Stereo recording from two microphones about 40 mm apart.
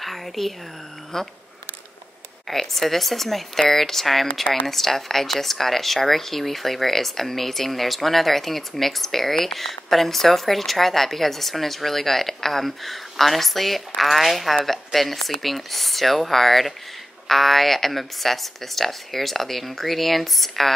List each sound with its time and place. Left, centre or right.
0.0 s speech: centre
2.4 s speech: centre